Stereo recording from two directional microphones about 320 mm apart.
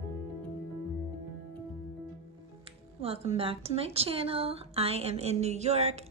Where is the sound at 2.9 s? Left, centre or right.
Centre.